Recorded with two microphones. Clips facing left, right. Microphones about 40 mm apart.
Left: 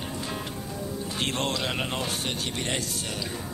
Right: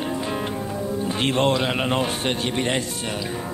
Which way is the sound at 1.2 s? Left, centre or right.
Right.